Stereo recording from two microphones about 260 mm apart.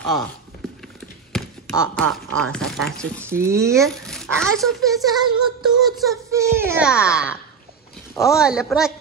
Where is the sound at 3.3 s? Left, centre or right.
Centre.